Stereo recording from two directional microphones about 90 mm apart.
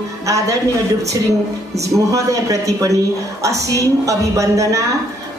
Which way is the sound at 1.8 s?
35° right (ahead or behind).